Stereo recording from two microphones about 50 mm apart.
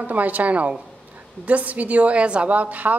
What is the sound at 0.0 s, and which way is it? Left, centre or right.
A woman's voice, right.